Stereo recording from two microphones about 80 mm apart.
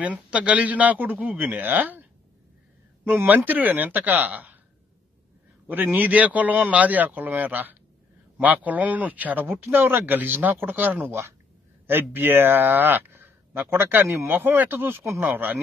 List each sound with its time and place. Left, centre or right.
0.0 s speech: centre
3.1 s speech: right
5.7 s speech: right